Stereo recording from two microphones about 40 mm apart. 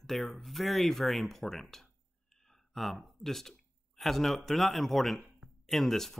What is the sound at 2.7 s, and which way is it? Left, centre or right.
Speech, centre.